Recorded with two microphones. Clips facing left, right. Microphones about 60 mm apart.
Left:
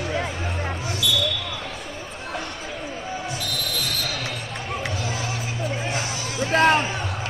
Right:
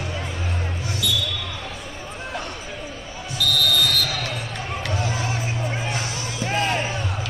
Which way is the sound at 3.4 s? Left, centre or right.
Right.